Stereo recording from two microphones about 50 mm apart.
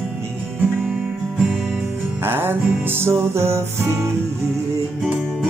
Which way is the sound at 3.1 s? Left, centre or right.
Right.